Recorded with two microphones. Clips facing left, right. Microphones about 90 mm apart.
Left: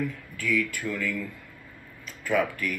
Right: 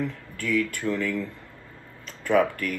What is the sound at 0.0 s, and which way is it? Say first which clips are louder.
Speech: right 1 dB; 35° right (ahead or behind).